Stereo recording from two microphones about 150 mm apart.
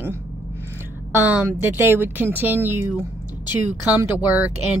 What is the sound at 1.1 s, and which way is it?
A woman's voice, 10° right (ahead or behind).